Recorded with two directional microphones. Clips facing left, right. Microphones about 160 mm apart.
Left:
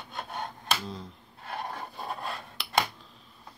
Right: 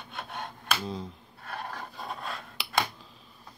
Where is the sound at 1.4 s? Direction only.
25° left (ahead or behind).